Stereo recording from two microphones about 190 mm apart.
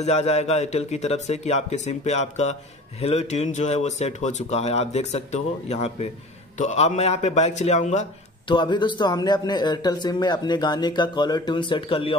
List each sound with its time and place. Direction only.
0.0 s speech: 35° left (ahead or behind)
8.5 s speech: 25° left (ahead or behind)